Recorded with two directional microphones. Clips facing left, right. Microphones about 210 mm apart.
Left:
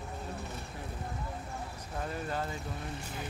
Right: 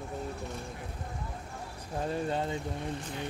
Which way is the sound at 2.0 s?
25° right (ahead or behind).